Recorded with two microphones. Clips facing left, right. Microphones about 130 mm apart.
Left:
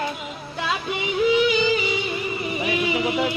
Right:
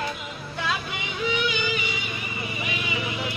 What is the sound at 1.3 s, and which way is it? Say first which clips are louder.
Music: left 8 dB; 35° left (ahead or behind).